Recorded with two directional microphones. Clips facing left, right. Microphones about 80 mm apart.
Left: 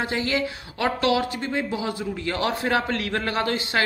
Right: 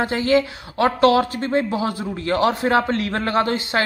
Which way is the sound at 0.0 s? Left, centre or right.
Right.